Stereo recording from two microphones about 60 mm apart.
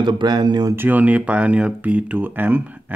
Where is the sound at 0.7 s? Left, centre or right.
Right.